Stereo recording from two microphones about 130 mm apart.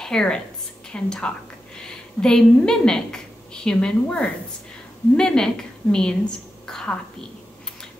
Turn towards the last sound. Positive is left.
turn(degrees=5)  # may be behind; listen again after turning